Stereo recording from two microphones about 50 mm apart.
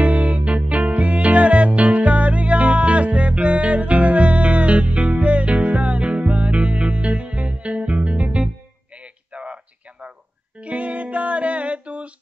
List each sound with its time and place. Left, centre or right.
0.0 s music: right
9.3 s a sound: right
10.6 s music: right